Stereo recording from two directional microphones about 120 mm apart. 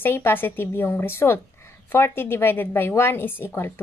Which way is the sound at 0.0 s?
20° left (ahead or behind).